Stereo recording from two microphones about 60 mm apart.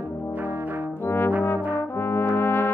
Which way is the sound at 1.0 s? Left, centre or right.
Left.